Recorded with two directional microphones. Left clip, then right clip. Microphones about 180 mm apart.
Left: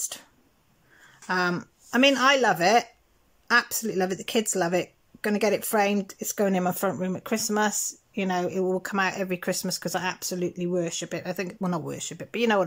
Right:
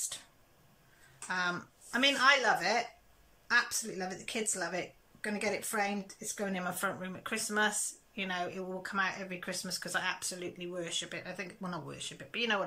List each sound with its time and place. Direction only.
1.2 s speech: 45° left (ahead or behind)